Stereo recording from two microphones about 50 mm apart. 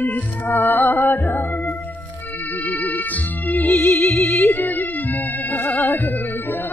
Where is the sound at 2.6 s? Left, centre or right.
Left.